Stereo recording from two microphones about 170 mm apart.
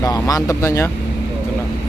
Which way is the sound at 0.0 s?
20° left (ahead or behind).